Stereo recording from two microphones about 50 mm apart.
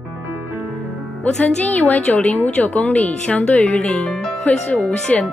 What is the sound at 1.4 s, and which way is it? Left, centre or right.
A woman's voice, left.